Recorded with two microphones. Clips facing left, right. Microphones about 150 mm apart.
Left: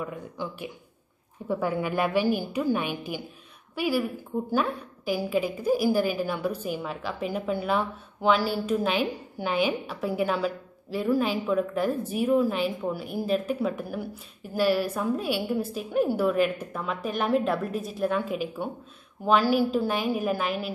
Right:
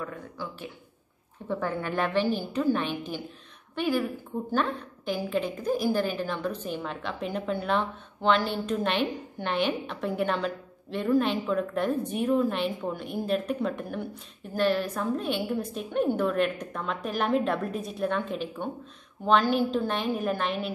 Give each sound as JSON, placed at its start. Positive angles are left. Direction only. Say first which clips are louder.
{"t": 0.0, "sound": "a woman's voice", "louder": "left 3 dB", "side_deg": 15}